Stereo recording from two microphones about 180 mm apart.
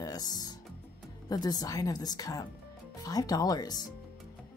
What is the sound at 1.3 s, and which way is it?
Speech, 20° left (ahead or behind).